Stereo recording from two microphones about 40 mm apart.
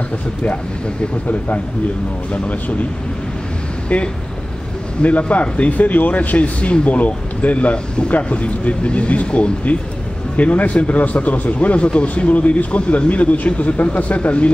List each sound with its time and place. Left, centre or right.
3.9 s a man's voice: left
12.3 s speech: left